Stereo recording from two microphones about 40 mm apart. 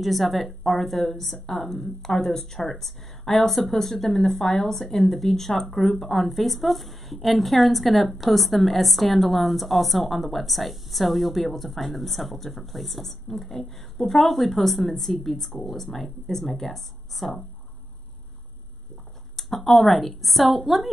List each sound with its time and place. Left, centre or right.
0.0 s speech: centre
19.3 s speech: centre